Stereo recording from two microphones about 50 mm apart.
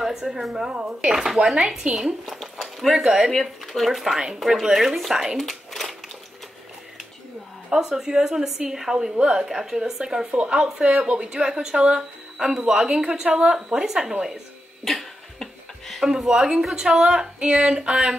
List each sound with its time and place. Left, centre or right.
0.0 s a woman's voice: centre
2.2 s speech: centre
5.4 s a sound: centre
7.7 s a woman's voice: centre
15.3 s a sound: centre
16.0 s speech: centre